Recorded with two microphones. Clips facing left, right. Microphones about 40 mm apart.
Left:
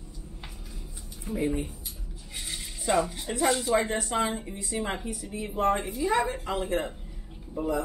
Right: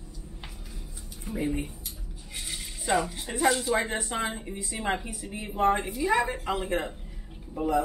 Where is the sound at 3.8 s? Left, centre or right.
Right.